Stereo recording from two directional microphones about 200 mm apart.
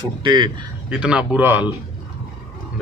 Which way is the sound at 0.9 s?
5° right (ahead or behind).